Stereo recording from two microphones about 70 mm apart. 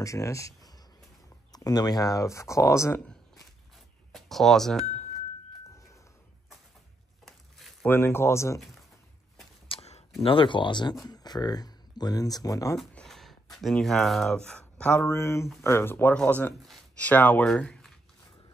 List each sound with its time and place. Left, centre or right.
0.0 s speech: left
4.1 s speech: centre
7.2 s a sound: centre
7.8 s speech: left
10.7 s speech: left
11.1 s speech: left
13.0 s a sound: centre
14.3 s speech: centre
15.0 s speech: left; by 17.7 s centre